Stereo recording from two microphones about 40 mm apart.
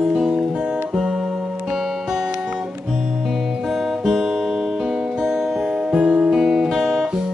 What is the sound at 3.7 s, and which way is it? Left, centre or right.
Music, centre.